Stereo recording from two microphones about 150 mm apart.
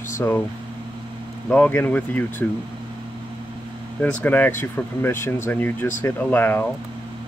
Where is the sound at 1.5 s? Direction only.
10° left (ahead or behind).